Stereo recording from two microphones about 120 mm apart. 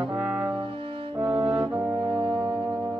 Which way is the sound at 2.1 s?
45° right (ahead or behind).